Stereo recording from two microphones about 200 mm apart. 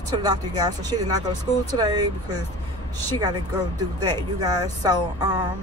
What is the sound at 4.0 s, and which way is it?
Speech, 20° right (ahead or behind).